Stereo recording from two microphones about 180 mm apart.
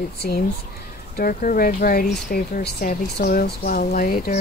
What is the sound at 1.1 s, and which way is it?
Speech, 50° left (ahead or behind).